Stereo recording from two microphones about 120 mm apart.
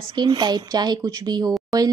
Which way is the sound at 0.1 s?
35° right (ahead or behind).